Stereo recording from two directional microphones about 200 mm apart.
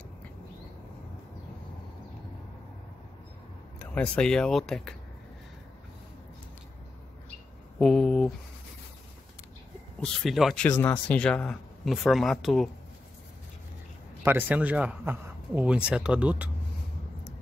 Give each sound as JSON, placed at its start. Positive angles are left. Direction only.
{"t": 3.9, "sound": "speech", "side_deg": 5}
{"t": 7.8, "sound": "speech", "side_deg": 5}
{"t": 9.9, "sound": "speech", "side_deg": 0}
{"t": 14.2, "sound": "speech", "side_deg": -5}